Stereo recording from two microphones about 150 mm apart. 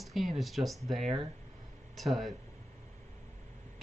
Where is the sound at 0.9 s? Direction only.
45° right (ahead or behind).